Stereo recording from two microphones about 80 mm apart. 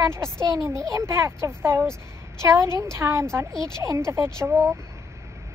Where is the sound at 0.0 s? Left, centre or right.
Right.